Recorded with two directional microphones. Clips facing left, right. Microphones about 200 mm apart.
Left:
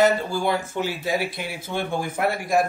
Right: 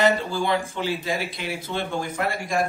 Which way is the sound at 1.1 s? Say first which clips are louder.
Left 3 dB; 50° left (ahead or behind).